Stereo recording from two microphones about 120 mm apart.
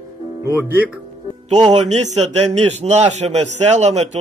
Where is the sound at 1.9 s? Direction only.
70° right (ahead or behind).